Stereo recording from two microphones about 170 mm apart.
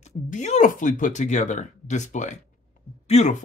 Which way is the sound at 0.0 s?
40° left (ahead or behind).